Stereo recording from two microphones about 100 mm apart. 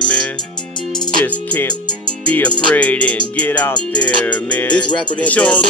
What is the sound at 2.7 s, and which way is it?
Music, 15° left (ahead or behind).